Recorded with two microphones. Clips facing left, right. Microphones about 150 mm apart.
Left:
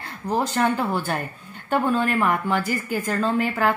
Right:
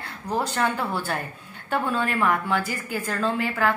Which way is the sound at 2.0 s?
5° left (ahead or behind).